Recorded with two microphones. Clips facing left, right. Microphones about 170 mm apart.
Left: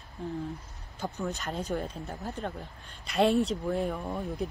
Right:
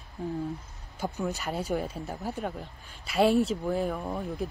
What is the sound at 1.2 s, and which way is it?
Speech, 5° right (ahead or behind).